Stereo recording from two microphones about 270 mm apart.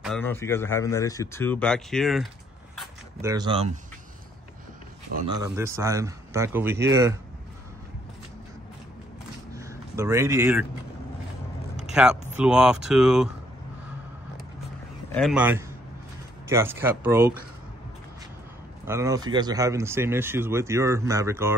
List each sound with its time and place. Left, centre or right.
0.0 s speech: centre
3.2 s speech: centre
5.3 s speech: centre
9.5 s a sound: centre
11.8 s speech: centre
15.0 s speech: centre
18.9 s speech: centre